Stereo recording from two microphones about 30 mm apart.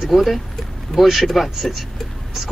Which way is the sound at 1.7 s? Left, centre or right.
Centre.